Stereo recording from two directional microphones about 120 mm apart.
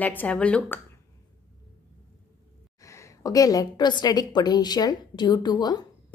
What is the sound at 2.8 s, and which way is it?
A woman's voice, 25° left (ahead or behind).